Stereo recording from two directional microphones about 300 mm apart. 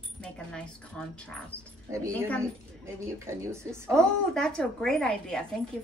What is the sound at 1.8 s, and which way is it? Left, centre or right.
Speech, centre.